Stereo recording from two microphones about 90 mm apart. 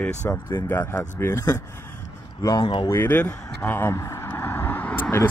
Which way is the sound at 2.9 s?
25° left (ahead or behind).